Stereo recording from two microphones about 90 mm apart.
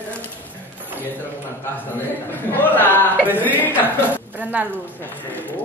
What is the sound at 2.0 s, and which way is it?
A man's voice, 20° left (ahead or behind).